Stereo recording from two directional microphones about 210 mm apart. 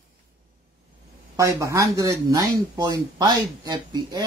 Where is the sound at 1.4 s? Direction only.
15° right (ahead or behind).